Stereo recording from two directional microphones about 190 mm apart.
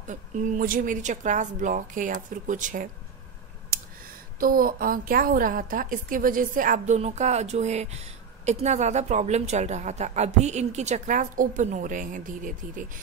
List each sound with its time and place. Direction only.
0.0 s a woman's voice: 40° right (ahead or behind)
4.4 s a woman's voice: 50° right (ahead or behind)